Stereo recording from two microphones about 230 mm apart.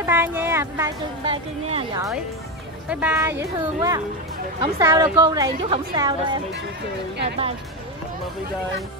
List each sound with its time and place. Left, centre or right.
0.0 s speech: centre
1.2 s a woman's voice: right
2.9 s a woman's voice: centre